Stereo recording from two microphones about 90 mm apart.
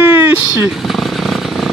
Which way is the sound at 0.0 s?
25° right (ahead or behind).